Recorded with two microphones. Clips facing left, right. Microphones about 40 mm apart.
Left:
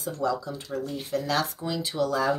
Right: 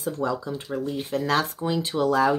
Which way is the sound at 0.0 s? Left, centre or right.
Right.